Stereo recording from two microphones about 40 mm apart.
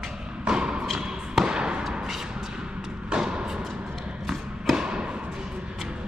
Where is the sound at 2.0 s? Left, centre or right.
Centre.